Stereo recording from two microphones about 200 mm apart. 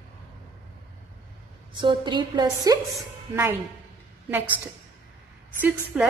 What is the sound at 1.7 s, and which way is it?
A woman's voice, 25° right (ahead or behind).